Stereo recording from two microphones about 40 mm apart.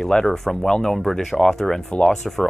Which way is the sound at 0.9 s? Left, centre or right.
Centre.